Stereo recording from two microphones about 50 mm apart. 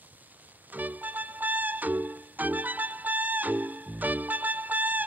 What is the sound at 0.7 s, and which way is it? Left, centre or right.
Music, right.